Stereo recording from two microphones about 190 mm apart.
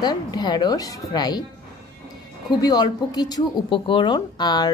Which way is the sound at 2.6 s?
20° left (ahead or behind).